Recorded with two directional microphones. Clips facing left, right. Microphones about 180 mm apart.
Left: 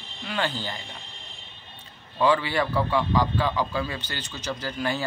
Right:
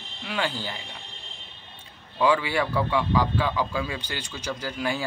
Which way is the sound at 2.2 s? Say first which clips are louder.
Even; 10° right (ahead or behind).